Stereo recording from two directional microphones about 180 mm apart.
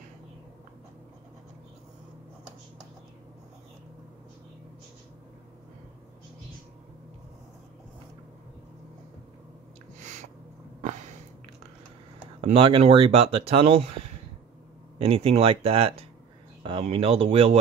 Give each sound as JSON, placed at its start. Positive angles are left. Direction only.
{"t": 9.9, "sound": "a sound", "side_deg": -40}
{"t": 12.4, "sound": "speech", "side_deg": -30}
{"t": 15.0, "sound": "speech", "side_deg": -30}